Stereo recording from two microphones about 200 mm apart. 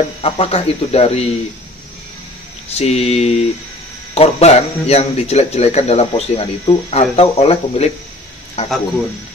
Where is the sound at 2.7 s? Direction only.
30° left (ahead or behind).